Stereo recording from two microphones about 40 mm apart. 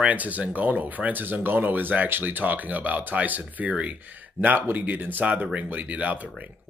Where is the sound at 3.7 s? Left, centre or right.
Right.